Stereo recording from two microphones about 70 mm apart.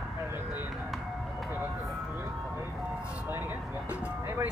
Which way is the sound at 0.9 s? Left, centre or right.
Centre.